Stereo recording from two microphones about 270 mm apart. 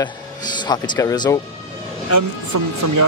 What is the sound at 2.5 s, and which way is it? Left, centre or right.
Speech, right.